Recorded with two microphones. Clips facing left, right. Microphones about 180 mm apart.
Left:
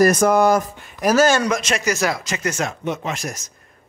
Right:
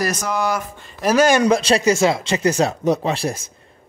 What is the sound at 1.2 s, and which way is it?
Speech, 15° right (ahead or behind).